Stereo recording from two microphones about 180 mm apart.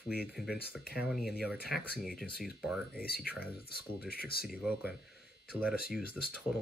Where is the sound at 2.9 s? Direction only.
60° left (ahead or behind).